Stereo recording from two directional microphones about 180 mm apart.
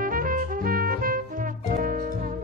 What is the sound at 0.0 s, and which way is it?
Music, 50° right (ahead or behind).